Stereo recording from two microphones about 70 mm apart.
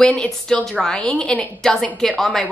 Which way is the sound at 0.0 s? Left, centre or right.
Centre.